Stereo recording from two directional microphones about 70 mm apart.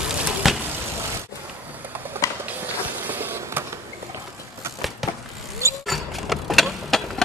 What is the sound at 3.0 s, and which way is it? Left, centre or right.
Vehicle, right.